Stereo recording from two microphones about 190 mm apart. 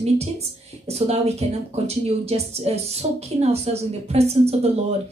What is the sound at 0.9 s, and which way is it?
A woman's voice, 35° right (ahead or behind).